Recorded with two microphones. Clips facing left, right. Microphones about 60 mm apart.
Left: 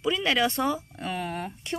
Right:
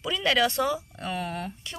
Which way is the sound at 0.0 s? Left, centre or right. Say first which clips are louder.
Even; centre.